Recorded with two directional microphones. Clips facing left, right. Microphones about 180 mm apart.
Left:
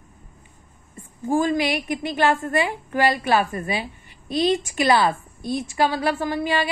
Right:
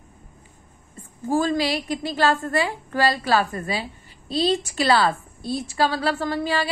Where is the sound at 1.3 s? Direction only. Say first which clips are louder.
Left 1 dB; 15° left (ahead or behind).